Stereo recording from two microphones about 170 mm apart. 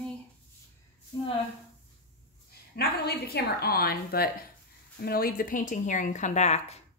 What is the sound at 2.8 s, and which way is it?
A woman's voice, 70° left (ahead or behind).